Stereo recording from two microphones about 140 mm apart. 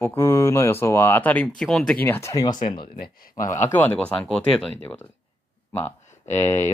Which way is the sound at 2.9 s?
90° left.